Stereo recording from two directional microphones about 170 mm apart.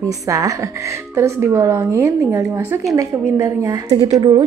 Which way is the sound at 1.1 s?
15° right (ahead or behind).